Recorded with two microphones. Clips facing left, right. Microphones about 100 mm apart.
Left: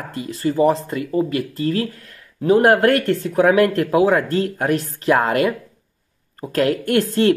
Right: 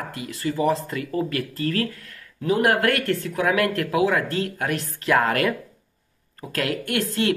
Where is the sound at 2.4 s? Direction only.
35° left (ahead or behind).